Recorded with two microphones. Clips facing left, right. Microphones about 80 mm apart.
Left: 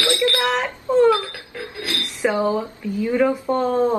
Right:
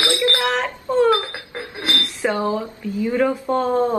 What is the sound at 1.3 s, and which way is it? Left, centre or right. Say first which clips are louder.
Speech: right 1 dB; right.